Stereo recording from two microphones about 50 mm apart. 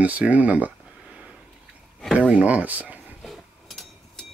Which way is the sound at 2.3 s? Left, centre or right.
Right.